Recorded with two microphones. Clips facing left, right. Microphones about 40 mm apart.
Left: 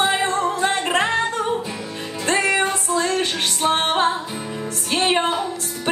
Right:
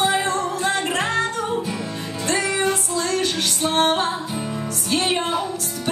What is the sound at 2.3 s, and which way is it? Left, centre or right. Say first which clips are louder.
Music: left 2 dB; left.